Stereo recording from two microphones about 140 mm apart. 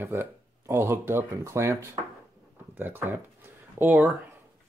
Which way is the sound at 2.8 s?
15° right (ahead or behind).